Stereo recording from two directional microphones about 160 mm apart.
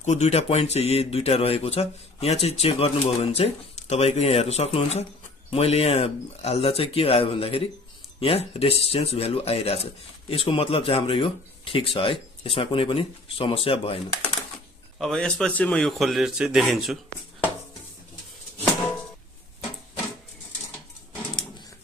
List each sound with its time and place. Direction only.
0.0 s speech: 45° left (ahead or behind)
15.0 s a man's voice: 5° left (ahead or behind)